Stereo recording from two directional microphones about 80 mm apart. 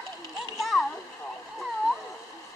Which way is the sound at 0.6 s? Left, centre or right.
Centre.